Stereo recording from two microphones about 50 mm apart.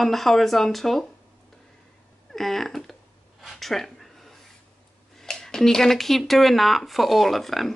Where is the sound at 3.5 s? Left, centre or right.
Centre.